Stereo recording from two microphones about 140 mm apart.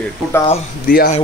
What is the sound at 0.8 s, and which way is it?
Speech, 90° left.